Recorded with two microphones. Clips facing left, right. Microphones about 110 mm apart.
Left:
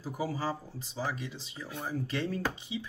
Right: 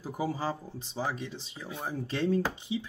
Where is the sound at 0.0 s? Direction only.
20° right (ahead or behind).